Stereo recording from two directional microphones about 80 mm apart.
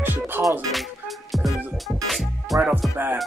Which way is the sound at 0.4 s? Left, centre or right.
Right.